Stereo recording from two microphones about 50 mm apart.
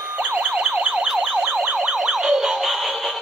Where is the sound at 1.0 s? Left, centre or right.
Centre.